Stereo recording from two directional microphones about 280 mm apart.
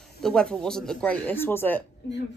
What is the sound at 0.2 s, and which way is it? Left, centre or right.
Speech, centre.